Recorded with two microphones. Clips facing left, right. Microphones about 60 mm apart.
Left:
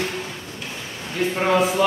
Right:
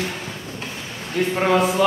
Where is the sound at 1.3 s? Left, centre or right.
Centre.